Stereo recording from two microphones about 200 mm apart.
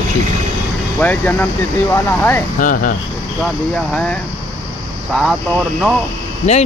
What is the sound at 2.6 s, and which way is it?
Speech, 45° left (ahead or behind).